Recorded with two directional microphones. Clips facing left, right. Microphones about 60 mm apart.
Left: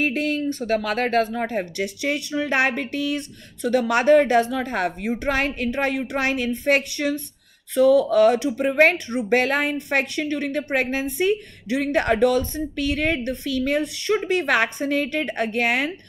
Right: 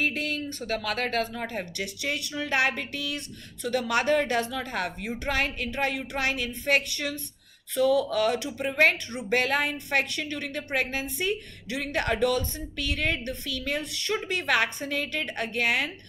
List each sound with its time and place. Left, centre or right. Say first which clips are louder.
0.0 s speech: left 6 dB; left